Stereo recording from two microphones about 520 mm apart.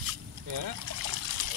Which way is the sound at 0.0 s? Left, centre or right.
Right.